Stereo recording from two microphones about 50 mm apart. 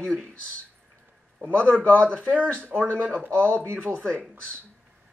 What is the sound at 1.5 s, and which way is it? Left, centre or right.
A man's voice, left.